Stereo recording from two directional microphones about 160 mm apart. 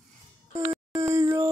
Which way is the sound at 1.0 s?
20° right (ahead or behind).